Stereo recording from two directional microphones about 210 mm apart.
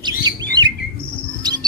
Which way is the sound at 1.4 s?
20° right (ahead or behind).